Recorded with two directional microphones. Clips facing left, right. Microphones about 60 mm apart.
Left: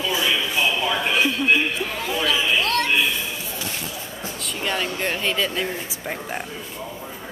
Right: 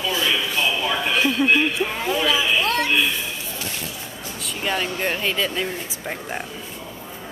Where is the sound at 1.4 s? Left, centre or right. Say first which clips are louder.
Right 2 dB; right.